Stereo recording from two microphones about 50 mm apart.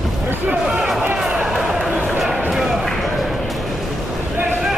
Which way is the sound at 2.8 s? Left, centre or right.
Centre.